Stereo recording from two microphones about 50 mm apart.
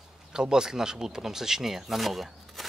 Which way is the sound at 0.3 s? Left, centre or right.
Centre.